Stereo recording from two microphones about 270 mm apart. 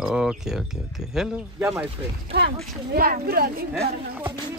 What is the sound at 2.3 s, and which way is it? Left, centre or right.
Speech, right.